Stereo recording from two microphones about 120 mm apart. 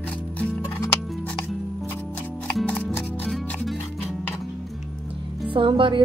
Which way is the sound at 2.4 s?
5° left (ahead or behind).